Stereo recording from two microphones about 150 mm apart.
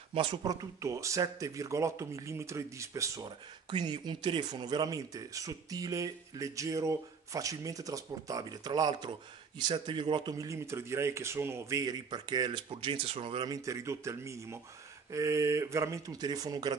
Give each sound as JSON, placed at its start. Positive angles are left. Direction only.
{"t": 0.1, "sound": "speech", "side_deg": -35}
{"t": 0.5, "sound": "a man's voice", "side_deg": -20}
{"t": 10.3, "sound": "speech", "side_deg": -20}
{"t": 13.5, "sound": "speech", "side_deg": -20}